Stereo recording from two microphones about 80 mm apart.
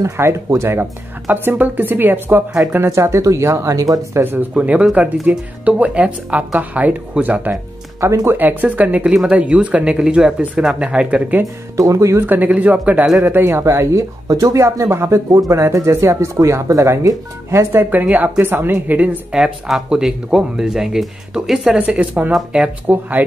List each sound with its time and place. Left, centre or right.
0.0 s a woman's voice: right
2.9 s speech: right
4.2 s a woman's voice: right
8.0 s speech: right
8.3 s speech: right
11.7 s speech: right
12.3 s a woman's voice: centre
19.3 s a woman's voice: centre